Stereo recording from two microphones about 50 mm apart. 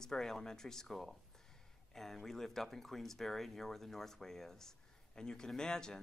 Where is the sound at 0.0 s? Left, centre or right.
Centre.